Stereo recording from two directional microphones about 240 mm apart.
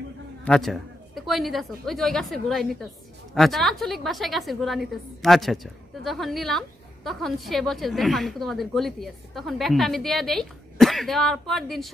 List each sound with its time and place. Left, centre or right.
0.5 s a woman's voice: centre